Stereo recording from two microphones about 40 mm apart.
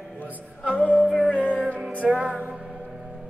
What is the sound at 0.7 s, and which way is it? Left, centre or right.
Music, left.